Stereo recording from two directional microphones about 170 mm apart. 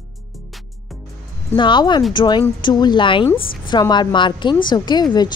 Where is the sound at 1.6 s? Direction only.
25° left (ahead or behind).